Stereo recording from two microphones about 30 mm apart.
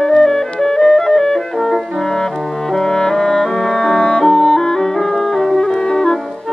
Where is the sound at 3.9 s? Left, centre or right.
Left.